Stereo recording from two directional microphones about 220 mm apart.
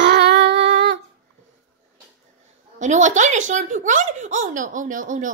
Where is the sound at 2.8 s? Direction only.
35° right (ahead or behind).